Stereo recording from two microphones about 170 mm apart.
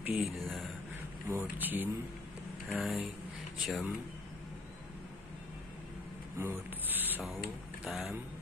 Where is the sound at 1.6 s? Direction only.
10° right (ahead or behind).